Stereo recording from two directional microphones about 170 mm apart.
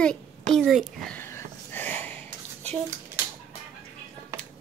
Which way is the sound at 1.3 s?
10° left (ahead or behind).